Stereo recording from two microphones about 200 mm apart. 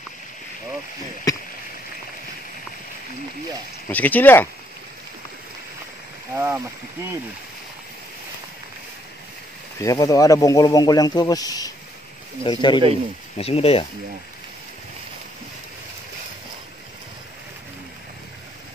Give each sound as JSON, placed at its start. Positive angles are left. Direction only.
{"t": 3.9, "sound": "speech", "side_deg": 10}
{"t": 6.3, "sound": "speech", "side_deg": -10}
{"t": 9.8, "sound": "speech", "side_deg": 15}